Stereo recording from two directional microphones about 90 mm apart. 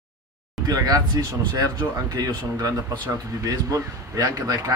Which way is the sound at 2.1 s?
45° right (ahead or behind).